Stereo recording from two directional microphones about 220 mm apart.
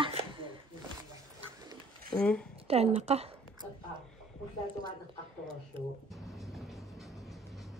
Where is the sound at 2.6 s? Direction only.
30° right (ahead or behind).